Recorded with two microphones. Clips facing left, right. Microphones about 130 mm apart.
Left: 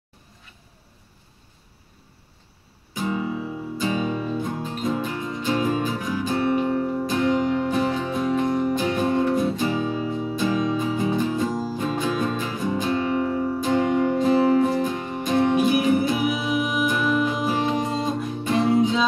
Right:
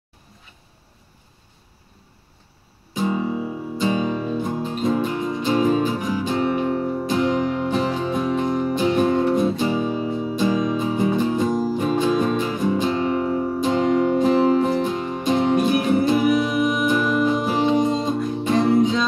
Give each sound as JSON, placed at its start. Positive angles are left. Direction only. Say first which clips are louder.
{"t": 2.9, "sound": "music", "louder": "right 3 dB", "side_deg": -25}
{"t": 15.5, "sound": "music", "louder": "right 1 dB", "side_deg": 5}
{"t": 17.5, "sound": "music", "louder": "right 5 dB", "side_deg": -20}
{"t": 18.8, "sound": "music", "louder": "right 2 dB", "side_deg": 5}